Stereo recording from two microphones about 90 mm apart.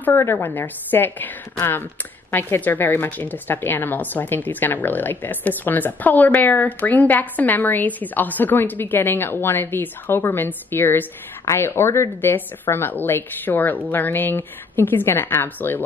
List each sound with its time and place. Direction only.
0.0 s a woman's voice: 25° left (ahead or behind)